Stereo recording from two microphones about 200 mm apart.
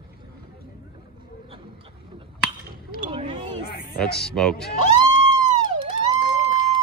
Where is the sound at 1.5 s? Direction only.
25° right (ahead or behind).